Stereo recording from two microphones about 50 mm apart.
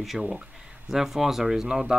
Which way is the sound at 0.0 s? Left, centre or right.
Centre.